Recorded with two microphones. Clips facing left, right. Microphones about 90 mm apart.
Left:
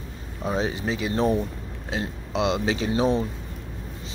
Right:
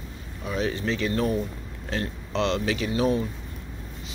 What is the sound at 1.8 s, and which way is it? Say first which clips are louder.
Speech: even; 15° left (ahead or behind).